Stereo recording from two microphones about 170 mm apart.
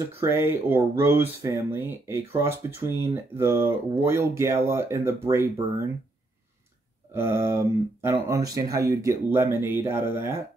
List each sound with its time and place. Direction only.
0.0 s speech: 15° right (ahead or behind)
7.2 s speech: 15° right (ahead or behind)